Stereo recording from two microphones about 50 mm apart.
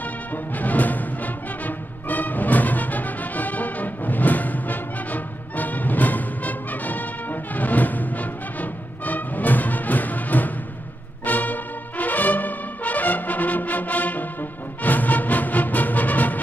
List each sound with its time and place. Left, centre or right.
0.6 s music: left
11.2 s brass instrument: left
14.8 s music: left